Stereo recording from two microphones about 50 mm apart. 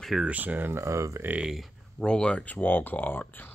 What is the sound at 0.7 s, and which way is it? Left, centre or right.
Speech, right.